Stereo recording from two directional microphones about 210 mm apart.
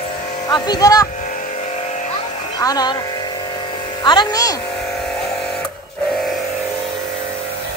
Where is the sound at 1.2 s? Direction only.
35° left (ahead or behind).